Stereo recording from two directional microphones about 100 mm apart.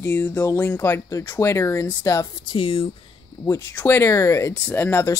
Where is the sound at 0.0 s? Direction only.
20° left (ahead or behind).